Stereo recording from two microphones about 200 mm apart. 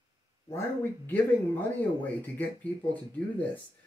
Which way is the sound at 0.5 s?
10° left (ahead or behind).